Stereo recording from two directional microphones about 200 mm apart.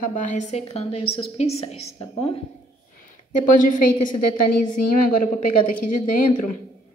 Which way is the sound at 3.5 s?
40° left (ahead or behind).